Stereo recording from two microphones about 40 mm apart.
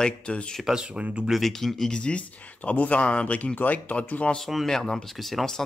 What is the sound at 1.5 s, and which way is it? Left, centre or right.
Speech, centre.